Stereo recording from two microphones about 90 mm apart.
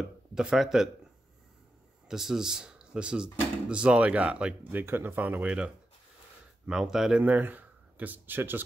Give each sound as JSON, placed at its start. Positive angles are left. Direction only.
{"t": 0.3, "sound": "speech", "side_deg": -10}
{"t": 2.0, "sound": "speech", "side_deg": -5}
{"t": 7.2, "sound": "speech", "side_deg": -20}